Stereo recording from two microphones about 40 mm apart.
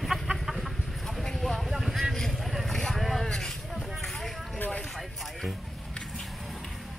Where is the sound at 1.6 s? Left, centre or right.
Centre.